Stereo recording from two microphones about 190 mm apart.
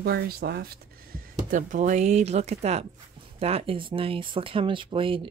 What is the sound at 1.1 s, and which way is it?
Speech, 45° right (ahead or behind).